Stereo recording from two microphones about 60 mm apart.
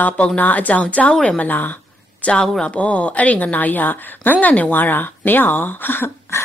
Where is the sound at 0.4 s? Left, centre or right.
Left.